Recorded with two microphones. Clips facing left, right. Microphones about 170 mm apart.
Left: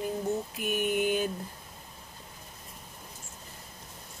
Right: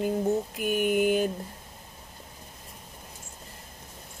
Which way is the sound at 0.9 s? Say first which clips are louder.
Right 4 dB; 50° right (ahead or behind).